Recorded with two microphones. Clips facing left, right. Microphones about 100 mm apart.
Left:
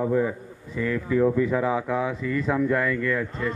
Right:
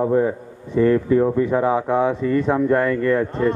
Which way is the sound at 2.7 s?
40° right (ahead or behind).